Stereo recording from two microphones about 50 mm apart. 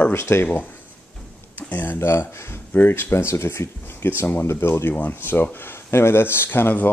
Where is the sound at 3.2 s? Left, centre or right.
Left.